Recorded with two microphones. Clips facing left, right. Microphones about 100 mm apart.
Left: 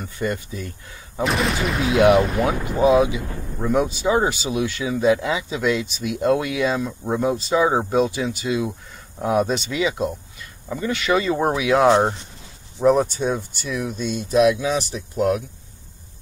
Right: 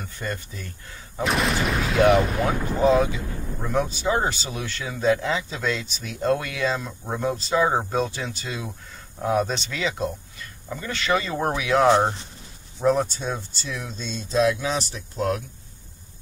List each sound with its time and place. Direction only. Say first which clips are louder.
0.2 s speech: left 7 dB; 15° left (ahead or behind)
1.2 s speech: left 2 dB; centre (ahead or behind)
2.0 s speech: left 3 dB; 15° left (ahead or behind)